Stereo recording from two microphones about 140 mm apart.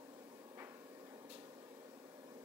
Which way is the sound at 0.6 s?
15° right (ahead or behind).